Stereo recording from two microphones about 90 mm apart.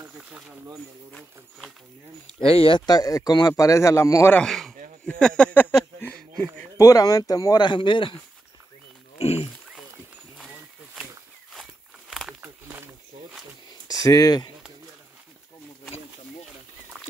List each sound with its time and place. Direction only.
2.4 s speech: 85° left
2.9 s a man's voice: 45° left (ahead or behind)
4.4 s speech: 5° left (ahead or behind)
5.0 s a sound: 10° left (ahead or behind)
6.8 s a man's voice: 40° left (ahead or behind)
7.6 s speech: 60° left (ahead or behind)
9.2 s speech: 90° left
12.4 s a sound: 20° right (ahead or behind)
14.0 s speech: 45° left (ahead or behind)